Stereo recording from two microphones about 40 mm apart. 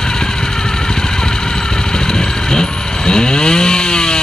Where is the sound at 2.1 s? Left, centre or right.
Centre.